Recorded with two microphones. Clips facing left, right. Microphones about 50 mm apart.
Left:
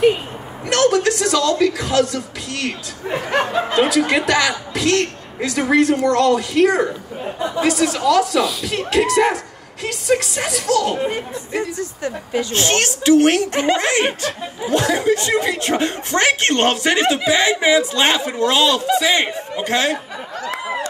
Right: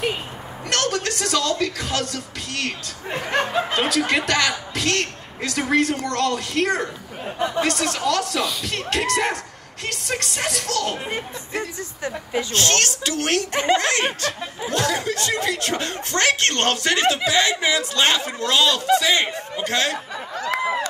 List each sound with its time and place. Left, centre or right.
0.7 s a woman's voice: centre
7.3 s speech: right
7.6 s a woman's voice: centre
11.8 s speech: right
12.5 s speech: centre